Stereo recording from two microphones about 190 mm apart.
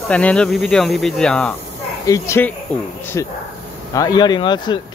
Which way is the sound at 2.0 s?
15° left (ahead or behind).